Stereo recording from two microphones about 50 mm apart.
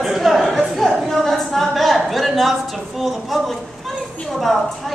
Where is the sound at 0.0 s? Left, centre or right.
Centre.